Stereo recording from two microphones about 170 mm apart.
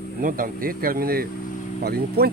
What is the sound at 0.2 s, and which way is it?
Speech, 55° right (ahead or behind).